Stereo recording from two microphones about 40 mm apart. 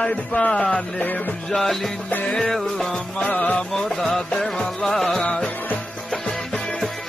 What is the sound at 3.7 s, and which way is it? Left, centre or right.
Music, centre.